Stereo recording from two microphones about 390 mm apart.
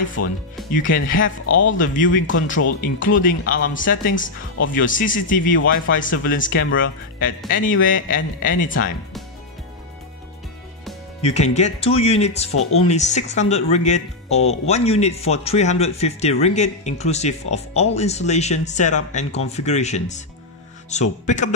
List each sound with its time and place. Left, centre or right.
0.2 s speech: left
0.7 s speech: left
11.1 s speech: centre